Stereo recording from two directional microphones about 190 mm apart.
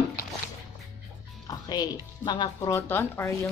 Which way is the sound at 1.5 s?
20° left (ahead or behind).